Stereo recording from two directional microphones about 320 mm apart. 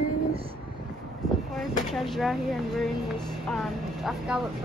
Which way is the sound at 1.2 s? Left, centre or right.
Centre.